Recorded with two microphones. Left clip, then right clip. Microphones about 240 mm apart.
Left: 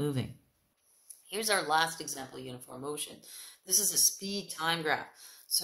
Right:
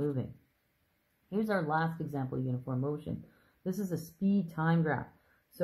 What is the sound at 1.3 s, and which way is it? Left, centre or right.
Speech, centre.